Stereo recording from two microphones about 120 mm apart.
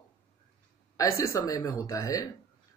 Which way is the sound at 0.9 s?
25° left (ahead or behind).